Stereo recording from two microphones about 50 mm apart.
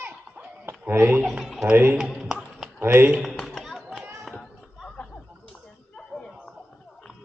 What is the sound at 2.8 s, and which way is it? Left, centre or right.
Speech, right.